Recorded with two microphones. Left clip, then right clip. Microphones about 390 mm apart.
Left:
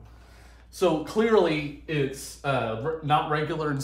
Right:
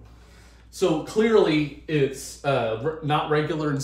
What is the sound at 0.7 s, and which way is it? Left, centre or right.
Speech, centre.